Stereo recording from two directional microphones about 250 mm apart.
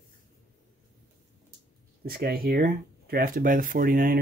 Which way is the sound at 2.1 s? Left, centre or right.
Right.